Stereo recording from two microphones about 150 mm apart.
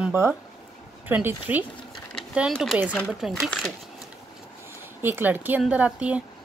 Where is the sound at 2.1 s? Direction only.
5° right (ahead or behind).